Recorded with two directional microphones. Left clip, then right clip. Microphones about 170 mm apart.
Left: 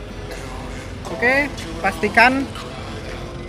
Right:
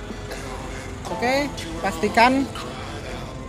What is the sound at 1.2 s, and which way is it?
Speech, 45° right (ahead or behind).